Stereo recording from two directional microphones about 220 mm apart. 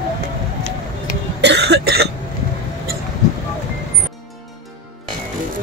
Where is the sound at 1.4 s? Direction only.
50° right (ahead or behind).